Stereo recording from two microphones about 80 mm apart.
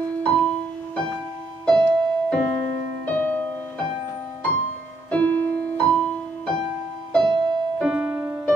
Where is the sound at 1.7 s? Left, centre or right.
Centre.